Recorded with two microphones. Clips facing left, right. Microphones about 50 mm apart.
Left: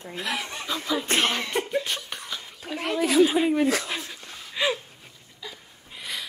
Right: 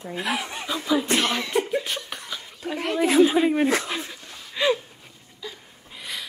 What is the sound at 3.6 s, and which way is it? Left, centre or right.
Speech, right.